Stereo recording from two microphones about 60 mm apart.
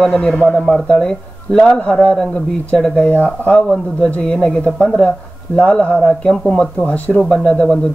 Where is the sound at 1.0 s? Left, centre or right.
Centre.